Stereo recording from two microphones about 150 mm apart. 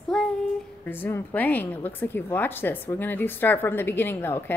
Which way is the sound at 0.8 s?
10° left (ahead or behind).